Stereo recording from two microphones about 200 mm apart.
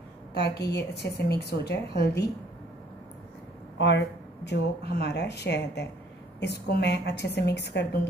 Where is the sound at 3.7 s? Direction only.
60° left (ahead or behind).